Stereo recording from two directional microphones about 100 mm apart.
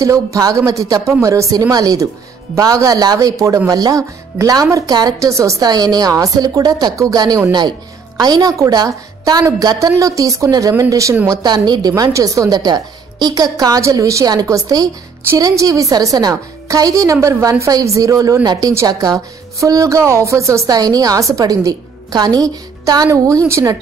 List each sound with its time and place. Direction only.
0.0 s speech: 35° right (ahead or behind)
11.2 s speech: 45° right (ahead or behind)
11.9 s speech: 35° right (ahead or behind)